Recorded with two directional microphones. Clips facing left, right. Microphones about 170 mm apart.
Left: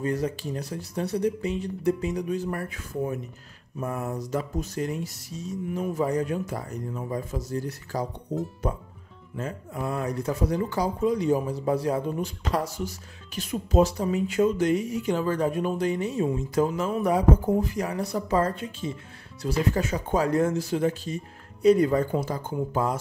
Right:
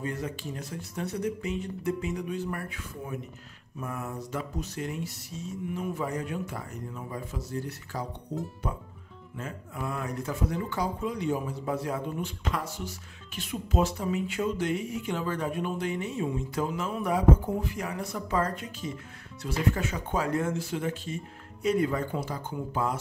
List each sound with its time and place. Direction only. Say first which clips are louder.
0.0 s speech: left 6 dB; 40° left (ahead or behind)
9.4 s speech: left 5 dB; 35° left (ahead or behind)